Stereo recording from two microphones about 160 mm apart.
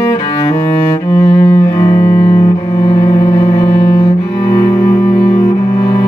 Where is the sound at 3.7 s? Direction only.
35° left (ahead or behind).